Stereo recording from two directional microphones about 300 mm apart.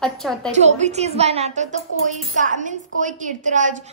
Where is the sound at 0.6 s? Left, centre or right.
Right.